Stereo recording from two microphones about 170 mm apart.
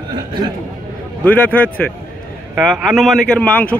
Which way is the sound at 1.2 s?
10° left (ahead or behind).